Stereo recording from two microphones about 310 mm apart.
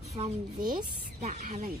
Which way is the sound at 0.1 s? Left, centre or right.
Centre.